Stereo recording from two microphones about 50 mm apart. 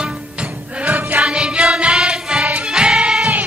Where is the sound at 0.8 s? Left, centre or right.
Right.